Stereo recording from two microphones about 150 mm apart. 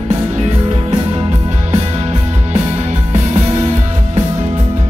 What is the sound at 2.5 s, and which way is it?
Music, 50° right (ahead or behind).